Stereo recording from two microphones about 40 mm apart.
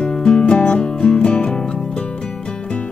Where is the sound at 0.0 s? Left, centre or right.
Left.